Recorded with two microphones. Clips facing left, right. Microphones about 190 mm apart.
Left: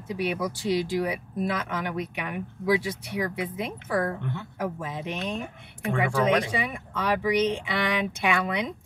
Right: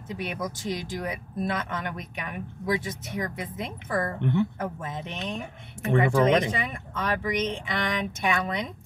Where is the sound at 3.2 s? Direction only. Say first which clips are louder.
Left 4 dB; 10° left (ahead or behind).